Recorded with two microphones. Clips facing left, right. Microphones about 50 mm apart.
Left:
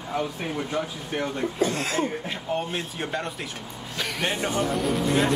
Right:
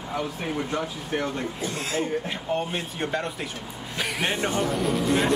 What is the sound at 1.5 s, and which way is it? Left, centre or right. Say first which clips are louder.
Speech: left 6 dB; left.